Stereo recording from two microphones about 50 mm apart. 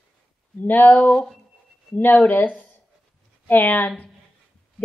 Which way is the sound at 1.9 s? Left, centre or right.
Left.